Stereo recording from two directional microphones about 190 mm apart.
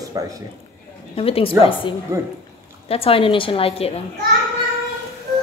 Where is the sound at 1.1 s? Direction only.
30° left (ahead or behind).